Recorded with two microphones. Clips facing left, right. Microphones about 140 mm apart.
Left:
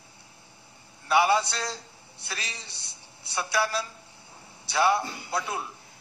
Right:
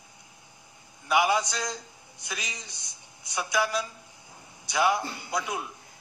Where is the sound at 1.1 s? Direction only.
15° right (ahead or behind).